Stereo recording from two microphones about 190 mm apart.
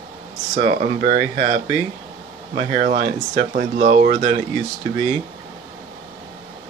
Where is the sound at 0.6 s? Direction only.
40° right (ahead or behind).